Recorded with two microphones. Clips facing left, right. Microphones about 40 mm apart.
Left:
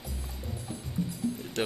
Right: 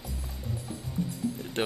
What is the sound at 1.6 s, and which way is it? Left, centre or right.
Speech, centre.